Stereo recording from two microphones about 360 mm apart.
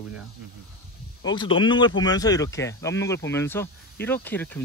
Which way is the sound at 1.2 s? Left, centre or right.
Centre.